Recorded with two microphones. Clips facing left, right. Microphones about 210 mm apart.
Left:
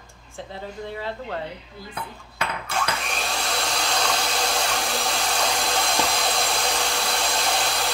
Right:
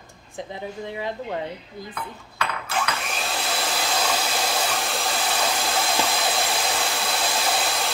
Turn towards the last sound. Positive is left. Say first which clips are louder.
# even
turn(degrees=0)  # may be behind; listen again after turning